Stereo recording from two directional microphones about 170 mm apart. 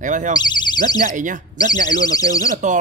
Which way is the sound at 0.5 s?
25° left (ahead or behind).